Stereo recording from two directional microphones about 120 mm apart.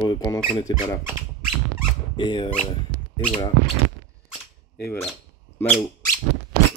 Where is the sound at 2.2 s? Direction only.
40° left (ahead or behind).